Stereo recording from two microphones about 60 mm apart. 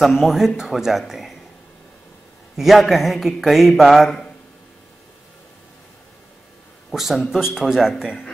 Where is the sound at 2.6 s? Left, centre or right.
Centre.